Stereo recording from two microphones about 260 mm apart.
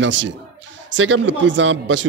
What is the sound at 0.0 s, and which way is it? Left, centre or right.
A man's voice, right.